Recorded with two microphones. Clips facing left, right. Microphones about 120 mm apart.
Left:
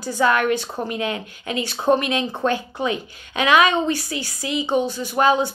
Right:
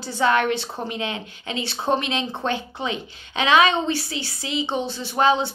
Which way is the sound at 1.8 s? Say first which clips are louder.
Left 5 dB; 45° left (ahead or behind).